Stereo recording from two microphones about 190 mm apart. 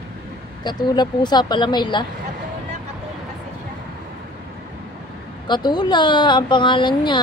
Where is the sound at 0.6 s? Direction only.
25° left (ahead or behind).